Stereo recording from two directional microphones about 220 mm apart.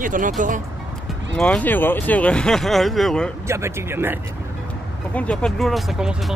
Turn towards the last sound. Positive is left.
turn(degrees=0)  # may be behind; listen again after turning